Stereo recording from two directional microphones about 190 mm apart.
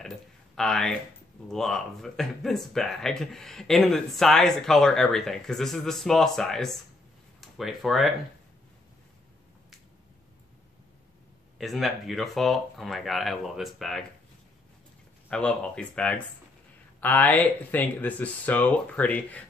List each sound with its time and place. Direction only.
0.6 s speech: 5° left (ahead or behind)
11.5 s speech: centre (ahead or behind)
15.2 s speech: 5° left (ahead or behind)